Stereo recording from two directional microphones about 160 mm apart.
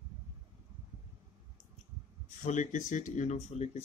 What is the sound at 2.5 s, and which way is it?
Speech, 50° left (ahead or behind).